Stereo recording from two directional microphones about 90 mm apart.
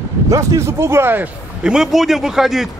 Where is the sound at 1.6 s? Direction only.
5° right (ahead or behind).